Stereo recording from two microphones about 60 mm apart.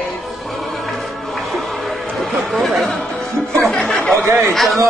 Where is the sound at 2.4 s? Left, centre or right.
Centre.